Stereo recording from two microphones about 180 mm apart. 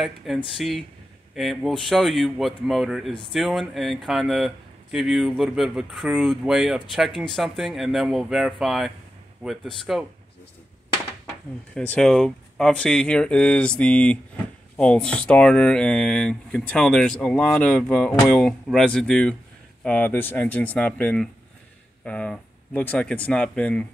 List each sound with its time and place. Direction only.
0.3 s speech: centre (ahead or behind)
3.1 s speech: 30° left (ahead or behind)
3.3 s speech: centre (ahead or behind)
11.7 s speech: 5° left (ahead or behind)